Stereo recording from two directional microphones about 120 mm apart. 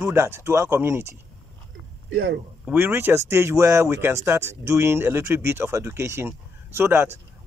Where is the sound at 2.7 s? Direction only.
20° right (ahead or behind).